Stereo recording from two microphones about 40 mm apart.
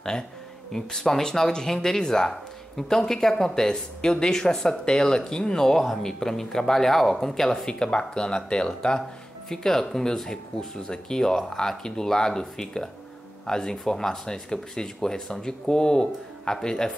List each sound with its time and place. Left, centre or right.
0.1 s speech: centre